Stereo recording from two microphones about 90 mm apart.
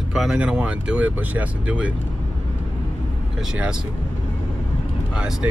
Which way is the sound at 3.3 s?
5° right (ahead or behind).